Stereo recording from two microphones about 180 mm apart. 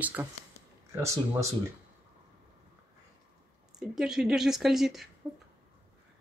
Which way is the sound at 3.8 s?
5° right (ahead or behind).